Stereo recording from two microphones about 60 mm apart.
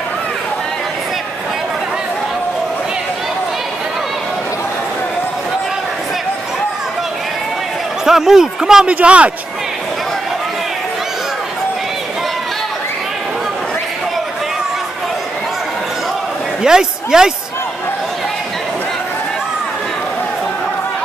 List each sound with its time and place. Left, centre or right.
8.0 s speech: centre
8.8 s speech: right
16.6 s a man's voice: centre